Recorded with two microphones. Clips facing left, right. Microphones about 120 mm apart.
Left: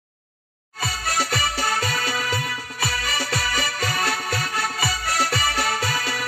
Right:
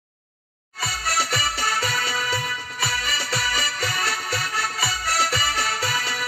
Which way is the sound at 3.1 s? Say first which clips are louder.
Left 1 dB; 50° left (ahead or behind).